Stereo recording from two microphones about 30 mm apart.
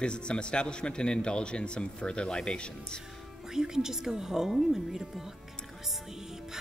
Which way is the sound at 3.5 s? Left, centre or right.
Centre.